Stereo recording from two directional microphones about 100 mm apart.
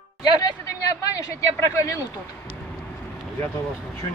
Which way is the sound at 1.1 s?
35° left (ahead or behind).